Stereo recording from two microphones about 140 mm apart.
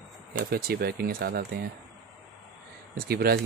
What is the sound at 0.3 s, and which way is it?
Speech, 90° right.